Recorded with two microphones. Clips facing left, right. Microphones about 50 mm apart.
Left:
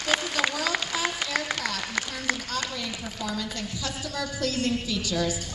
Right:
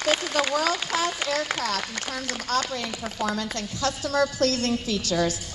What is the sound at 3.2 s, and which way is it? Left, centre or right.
A woman's voice, right.